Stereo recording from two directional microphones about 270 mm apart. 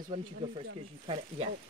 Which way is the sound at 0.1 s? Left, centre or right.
Centre.